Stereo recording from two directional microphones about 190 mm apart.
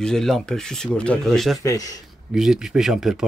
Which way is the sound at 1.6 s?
20° left (ahead or behind).